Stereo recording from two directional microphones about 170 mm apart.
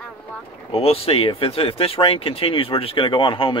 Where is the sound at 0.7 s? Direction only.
35° left (ahead or behind).